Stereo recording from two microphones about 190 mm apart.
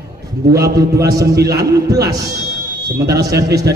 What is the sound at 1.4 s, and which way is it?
A man's voice, 55° right (ahead or behind).